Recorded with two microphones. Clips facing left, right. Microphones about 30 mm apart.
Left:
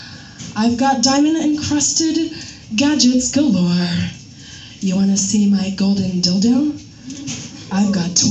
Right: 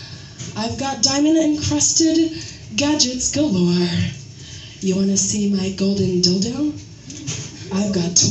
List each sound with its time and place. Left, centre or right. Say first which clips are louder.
0.4 s a woman's voice: left 8 dB; left
6.2 s a woman's voice: left 5 dB; left
7.1 s a sound: left 3 dB; left